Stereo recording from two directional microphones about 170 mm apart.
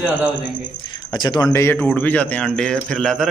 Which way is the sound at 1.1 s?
25° left (ahead or behind).